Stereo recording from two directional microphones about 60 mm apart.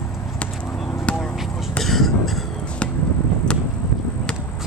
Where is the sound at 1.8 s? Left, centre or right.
Centre.